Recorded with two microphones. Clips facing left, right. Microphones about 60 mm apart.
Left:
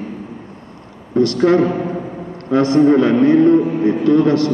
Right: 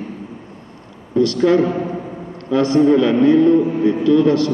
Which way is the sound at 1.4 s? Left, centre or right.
Left.